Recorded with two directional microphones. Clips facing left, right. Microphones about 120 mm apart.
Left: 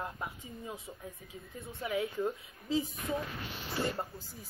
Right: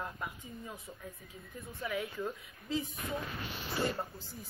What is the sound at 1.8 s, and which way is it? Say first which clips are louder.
Speech: left 4 dB; 20° left (ahead or behind).